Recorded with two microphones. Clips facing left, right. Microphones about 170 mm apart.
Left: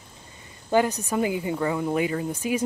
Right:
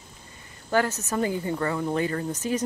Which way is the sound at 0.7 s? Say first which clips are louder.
Left 3 dB; 15° left (ahead or behind).